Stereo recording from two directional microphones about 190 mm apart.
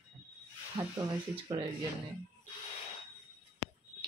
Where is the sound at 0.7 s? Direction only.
20° right (ahead or behind).